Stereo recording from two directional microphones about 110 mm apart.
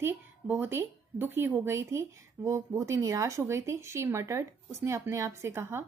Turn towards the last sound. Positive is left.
turn(degrees=-20)  # may be behind; listen again after turning